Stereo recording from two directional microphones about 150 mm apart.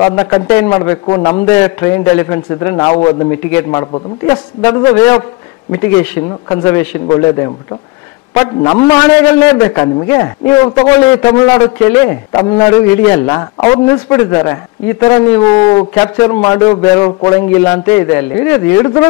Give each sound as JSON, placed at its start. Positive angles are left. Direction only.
{"t": 0.0, "sound": "a man's voice", "side_deg": 25}
{"t": 1.4, "sound": "a man's voice", "side_deg": 20}
{"t": 3.3, "sound": "a man's voice", "side_deg": 15}
{"t": 7.1, "sound": "a man's voice", "side_deg": 25}
{"t": 8.8, "sound": "a man's voice", "side_deg": 20}
{"t": 12.3, "sound": "a man's voice", "side_deg": 30}
{"t": 12.6, "sound": "a man's voice", "side_deg": 15}